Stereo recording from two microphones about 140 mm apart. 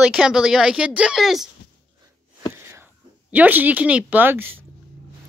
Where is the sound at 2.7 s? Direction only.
10° right (ahead or behind).